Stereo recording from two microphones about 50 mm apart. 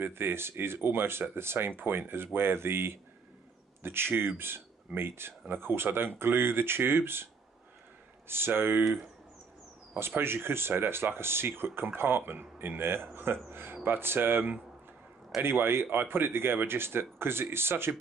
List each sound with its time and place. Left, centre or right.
0.0 s speech: right
8.3 s speech: right
9.9 s speech: right